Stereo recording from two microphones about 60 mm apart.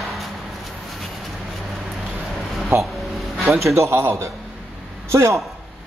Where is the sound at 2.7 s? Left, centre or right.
Right.